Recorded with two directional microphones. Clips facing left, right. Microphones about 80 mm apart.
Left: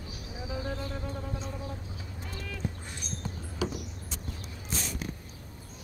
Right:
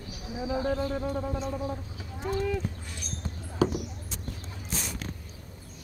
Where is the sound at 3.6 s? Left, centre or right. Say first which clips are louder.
Right 7 dB; right.